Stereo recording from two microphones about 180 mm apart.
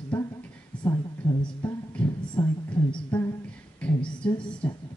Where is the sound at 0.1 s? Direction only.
10° left (ahead or behind).